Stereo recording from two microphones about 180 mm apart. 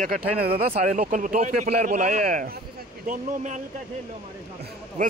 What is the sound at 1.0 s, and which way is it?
Speech, 50° right (ahead or behind).